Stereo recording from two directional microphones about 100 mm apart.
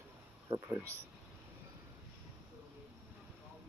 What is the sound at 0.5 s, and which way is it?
Speech, 60° right (ahead or behind).